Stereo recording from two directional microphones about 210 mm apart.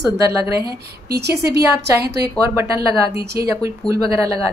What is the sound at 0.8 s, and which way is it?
Speech, 50° right (ahead or behind).